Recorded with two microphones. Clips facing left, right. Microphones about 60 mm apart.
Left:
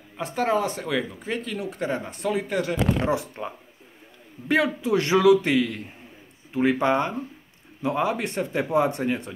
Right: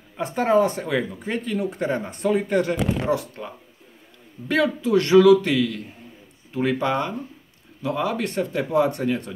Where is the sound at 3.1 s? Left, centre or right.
Left.